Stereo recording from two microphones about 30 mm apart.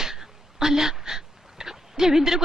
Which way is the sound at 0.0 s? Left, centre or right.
Centre.